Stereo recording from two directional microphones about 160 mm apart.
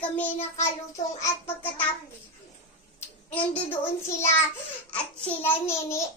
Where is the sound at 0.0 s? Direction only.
10° left (ahead or behind).